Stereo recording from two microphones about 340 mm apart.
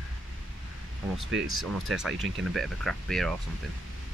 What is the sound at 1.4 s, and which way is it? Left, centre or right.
Speech, right.